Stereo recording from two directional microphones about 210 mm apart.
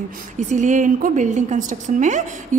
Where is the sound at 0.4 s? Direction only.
35° right (ahead or behind).